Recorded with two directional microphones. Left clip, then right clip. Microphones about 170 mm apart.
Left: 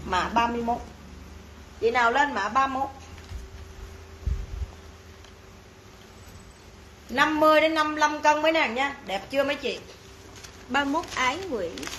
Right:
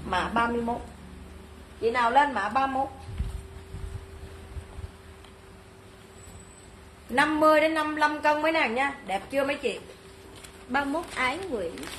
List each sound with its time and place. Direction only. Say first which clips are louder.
0.1 s a woman's voice: left 2 dB; 20° right (ahead or behind)
1.8 s a woman's voice: left 1 dB; centre (ahead or behind)
7.2 s a woman's voice: left 1 dB; 25° right (ahead or behind)
10.7 s a woman's voice: left 2 dB; 10° left (ahead or behind)